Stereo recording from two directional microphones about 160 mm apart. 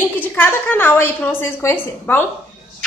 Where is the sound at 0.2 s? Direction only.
10° left (ahead or behind).